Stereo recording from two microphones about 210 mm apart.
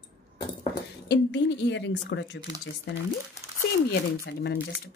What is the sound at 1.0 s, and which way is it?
A woman's voice, 55° left (ahead or behind).